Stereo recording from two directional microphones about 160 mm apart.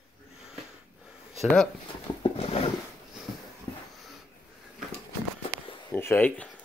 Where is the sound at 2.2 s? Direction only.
35° left (ahead or behind).